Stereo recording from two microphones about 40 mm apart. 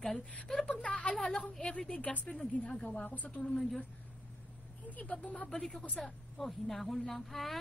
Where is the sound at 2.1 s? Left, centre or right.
Left.